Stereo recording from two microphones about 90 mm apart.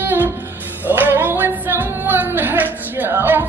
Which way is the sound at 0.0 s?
20° right (ahead or behind).